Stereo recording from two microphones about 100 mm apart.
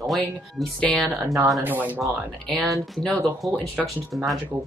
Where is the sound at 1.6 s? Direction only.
20° right (ahead or behind).